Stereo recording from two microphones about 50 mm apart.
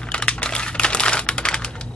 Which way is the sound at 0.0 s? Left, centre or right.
Centre.